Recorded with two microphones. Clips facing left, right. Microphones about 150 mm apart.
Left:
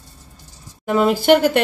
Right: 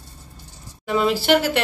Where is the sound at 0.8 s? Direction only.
50° left (ahead or behind).